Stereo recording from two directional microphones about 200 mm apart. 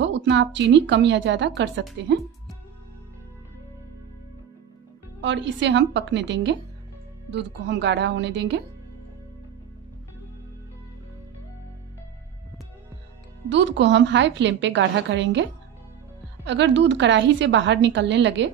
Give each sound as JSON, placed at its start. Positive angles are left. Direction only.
{"t": 0.0, "sound": "a woman's voice", "side_deg": -60}
{"t": 5.2, "sound": "a woman's voice", "side_deg": -65}
{"t": 13.5, "sound": "a woman's voice", "side_deg": -65}
{"t": 16.4, "sound": "a woman's voice", "side_deg": -65}